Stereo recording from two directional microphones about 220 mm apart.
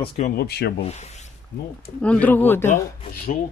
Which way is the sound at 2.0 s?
5° left (ahead or behind).